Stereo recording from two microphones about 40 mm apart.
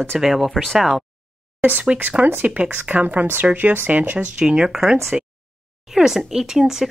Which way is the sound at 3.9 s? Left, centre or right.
Right.